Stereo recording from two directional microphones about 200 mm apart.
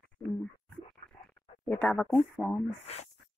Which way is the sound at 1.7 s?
10° left (ahead or behind).